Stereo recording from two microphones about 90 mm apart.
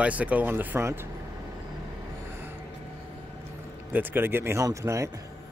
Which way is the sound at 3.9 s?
20° right (ahead or behind).